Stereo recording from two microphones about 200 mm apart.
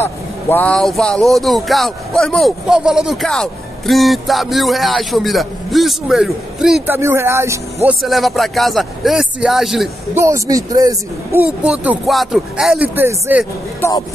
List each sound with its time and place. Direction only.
0.0 s speech: 10° left (ahead or behind)
7.0 s speech: 15° right (ahead or behind)
8.0 s speech: centre (ahead or behind)
10.1 s speech: 15° right (ahead or behind)
11.6 s speech: 5° right (ahead or behind)
13.7 s speech: 15° left (ahead or behind)